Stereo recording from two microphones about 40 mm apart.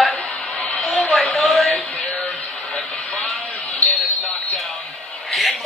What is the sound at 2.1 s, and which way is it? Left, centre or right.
Music, left.